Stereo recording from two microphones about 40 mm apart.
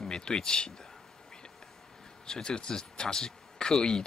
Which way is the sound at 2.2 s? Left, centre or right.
Centre.